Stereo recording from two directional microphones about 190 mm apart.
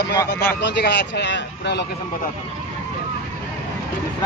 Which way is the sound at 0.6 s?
60° left (ahead or behind).